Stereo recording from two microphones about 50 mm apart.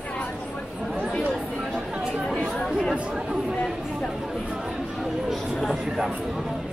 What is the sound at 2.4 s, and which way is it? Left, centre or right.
Chatter, centre.